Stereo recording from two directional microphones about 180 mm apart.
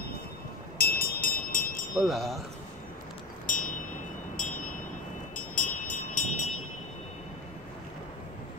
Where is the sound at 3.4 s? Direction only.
45° left (ahead or behind).